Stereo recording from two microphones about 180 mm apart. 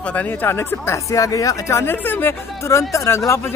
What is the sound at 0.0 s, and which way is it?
Speech, 10° left (ahead or behind).